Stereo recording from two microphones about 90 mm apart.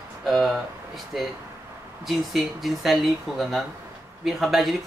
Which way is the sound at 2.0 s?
Centre (ahead or behind).